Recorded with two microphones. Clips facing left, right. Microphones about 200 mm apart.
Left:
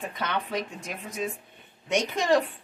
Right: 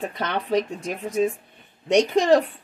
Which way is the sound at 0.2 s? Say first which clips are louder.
Right 7 dB; 40° right (ahead or behind).